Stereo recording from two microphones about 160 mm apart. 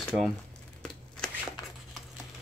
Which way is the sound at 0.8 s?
5° left (ahead or behind).